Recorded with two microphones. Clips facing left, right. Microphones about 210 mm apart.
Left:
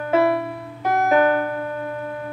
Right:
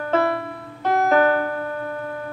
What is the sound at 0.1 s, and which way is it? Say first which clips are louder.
Music: left 3 dB; 5° left (ahead or behind).